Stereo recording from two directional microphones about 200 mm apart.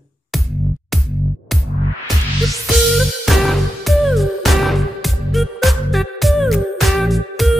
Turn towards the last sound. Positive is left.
turn(degrees=0)  # may be behind; listen again after turning